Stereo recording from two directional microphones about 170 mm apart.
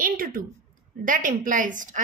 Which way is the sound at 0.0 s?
55° right (ahead or behind).